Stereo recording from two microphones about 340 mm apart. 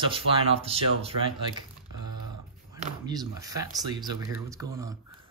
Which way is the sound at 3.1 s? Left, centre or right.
Centre.